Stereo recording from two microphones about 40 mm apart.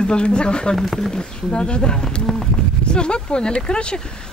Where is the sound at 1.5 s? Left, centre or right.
Left.